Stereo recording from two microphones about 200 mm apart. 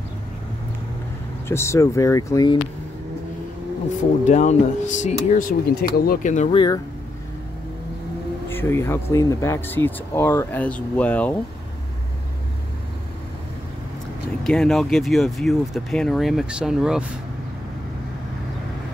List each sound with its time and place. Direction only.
1.5 s speech: 15° left (ahead or behind)
4.2 s speech: 35° left (ahead or behind)
6.5 s speech: 25° left (ahead or behind)
8.5 s speech: 10° left (ahead or behind)
14.4 s speech: centre (ahead or behind)